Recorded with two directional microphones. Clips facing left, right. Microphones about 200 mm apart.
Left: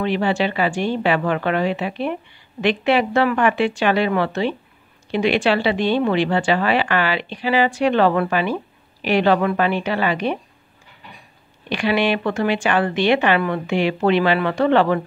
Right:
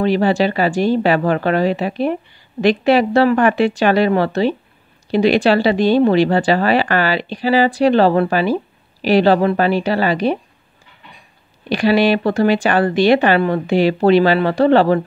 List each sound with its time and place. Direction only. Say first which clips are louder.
0.0 s speech: right 5 dB; 40° right (ahead or behind)
11.7 s speech: right 5 dB; 35° right (ahead or behind)